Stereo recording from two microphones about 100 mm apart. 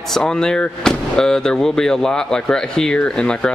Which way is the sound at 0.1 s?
5° left (ahead or behind).